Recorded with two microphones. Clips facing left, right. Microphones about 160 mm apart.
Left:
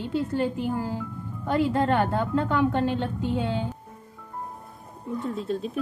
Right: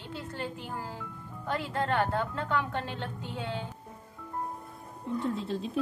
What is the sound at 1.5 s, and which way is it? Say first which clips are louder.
A woman's voice: left 8 dB; 15° left (ahead or behind).